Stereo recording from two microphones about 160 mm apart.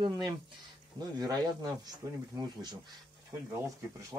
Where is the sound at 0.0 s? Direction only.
25° right (ahead or behind).